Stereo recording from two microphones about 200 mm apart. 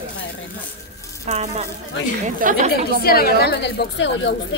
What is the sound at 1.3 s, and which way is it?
Speech, 35° right (ahead or behind).